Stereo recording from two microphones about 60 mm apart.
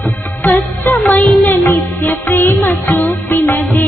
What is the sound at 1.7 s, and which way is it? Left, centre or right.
Music, left.